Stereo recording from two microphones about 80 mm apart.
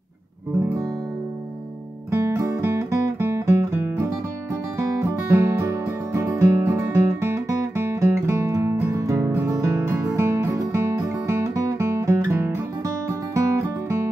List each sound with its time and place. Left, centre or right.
2.0 s music: right
5.3 s music: right
7.2 s music: right
10.1 s music: right